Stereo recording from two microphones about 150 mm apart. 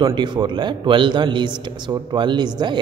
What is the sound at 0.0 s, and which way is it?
A man's voice, 30° right (ahead or behind).